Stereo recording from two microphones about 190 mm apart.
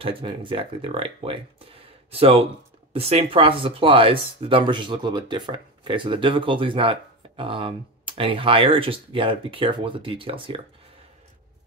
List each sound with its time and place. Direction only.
0.0 s speech: 25° right (ahead or behind)